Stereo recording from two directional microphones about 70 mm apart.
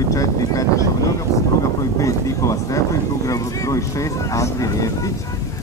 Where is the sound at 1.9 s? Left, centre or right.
Left.